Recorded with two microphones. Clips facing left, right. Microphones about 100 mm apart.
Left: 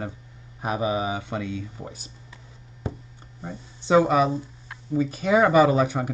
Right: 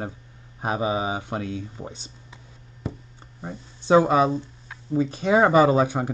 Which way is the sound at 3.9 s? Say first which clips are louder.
Right 1 dB; 25° right (ahead or behind).